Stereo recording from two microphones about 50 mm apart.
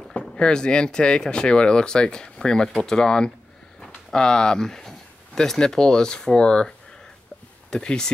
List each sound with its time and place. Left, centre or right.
0.1 s speech: centre
7.7 s speech: centre